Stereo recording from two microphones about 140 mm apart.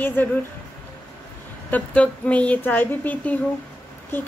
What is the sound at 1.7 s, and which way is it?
Speech, 10° left (ahead or behind).